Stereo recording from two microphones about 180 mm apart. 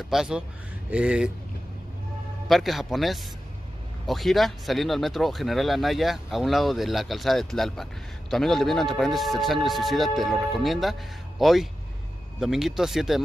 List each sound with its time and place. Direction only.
0.1 s speech: centre (ahead or behind)
2.4 s speech: centre (ahead or behind)